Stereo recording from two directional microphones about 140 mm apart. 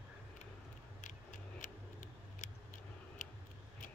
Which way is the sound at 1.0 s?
65° left (ahead or behind).